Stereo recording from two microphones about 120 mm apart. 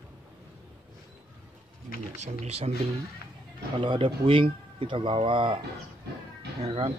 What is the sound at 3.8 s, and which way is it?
Speech, 45° right (ahead or behind).